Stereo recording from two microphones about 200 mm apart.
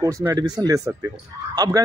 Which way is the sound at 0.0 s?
15° right (ahead or behind).